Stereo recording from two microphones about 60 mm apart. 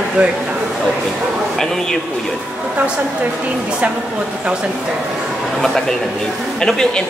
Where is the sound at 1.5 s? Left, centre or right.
Centre.